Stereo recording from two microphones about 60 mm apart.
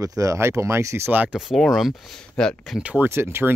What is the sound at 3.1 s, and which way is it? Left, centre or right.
Speech, right.